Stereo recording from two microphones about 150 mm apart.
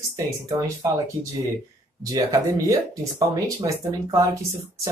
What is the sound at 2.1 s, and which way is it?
Speech, 25° right (ahead or behind).